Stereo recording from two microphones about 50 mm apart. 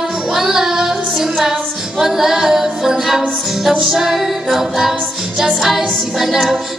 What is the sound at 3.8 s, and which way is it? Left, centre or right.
Music, centre.